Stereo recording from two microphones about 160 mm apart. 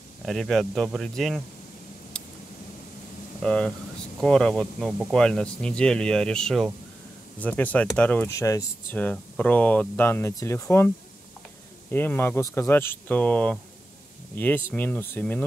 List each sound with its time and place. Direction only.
0.2 s speech: centre (ahead or behind)
2.1 s vehicle: 5° left (ahead or behind)
3.4 s speech: 5° left (ahead or behind)
8.3 s speech: 20° left (ahead or behind)
11.9 s speech: 15° left (ahead or behind)